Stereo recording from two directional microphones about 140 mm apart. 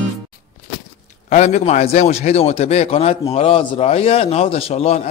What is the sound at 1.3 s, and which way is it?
Speech, 55° left (ahead or behind).